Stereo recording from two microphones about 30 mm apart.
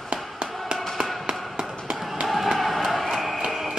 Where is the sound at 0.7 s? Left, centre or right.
Right.